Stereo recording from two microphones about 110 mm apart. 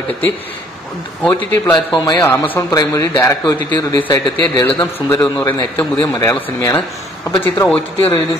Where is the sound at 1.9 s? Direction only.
30° left (ahead or behind).